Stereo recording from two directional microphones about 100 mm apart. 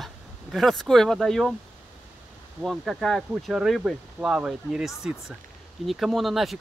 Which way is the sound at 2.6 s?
Centre (ahead or behind).